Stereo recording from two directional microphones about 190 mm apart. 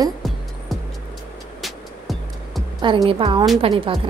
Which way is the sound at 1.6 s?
Centre (ahead or behind).